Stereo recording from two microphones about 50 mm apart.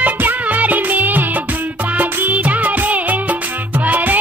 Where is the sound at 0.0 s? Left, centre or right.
Right.